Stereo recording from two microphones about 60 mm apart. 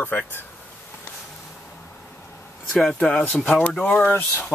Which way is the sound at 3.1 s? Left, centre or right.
Left.